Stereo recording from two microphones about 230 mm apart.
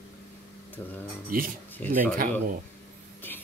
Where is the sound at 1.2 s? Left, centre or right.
Right.